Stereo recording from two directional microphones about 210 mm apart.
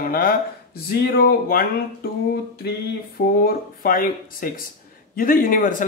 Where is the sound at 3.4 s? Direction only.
45° left (ahead or behind).